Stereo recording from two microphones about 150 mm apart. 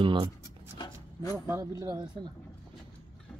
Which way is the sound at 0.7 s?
25° left (ahead or behind).